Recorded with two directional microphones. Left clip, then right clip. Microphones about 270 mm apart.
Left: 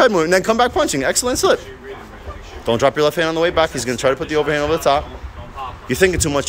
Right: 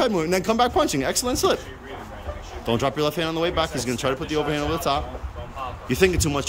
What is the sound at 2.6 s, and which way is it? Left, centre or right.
Speech, centre.